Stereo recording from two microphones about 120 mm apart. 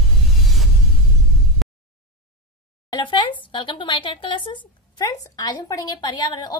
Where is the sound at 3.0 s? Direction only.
45° left (ahead or behind).